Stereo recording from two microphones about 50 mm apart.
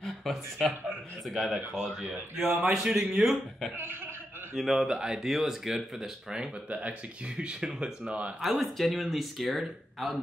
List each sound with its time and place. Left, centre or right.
0.0 s speech: centre
3.7 s chuckle: right
4.6 s speech: centre
4.8 s speech: centre
6.7 s speech: right
8.4 s speech: centre